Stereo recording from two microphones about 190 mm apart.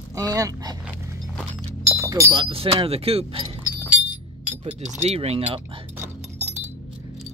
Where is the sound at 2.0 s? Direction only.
15° right (ahead or behind).